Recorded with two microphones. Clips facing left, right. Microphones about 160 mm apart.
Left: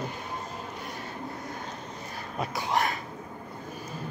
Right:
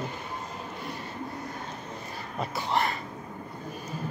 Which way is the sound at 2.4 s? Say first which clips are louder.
Even; 5° left (ahead or behind).